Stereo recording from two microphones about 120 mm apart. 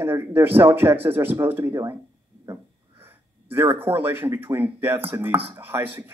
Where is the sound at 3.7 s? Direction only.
20° right (ahead or behind).